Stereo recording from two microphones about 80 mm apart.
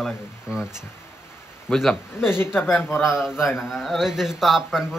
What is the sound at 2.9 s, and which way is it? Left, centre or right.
Speech, left.